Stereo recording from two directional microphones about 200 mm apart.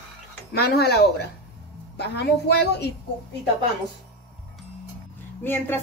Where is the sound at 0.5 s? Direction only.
55° left (ahead or behind).